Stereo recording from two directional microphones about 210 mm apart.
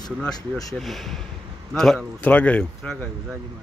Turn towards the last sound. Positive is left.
turn(degrees=5)  # may be behind; listen again after turning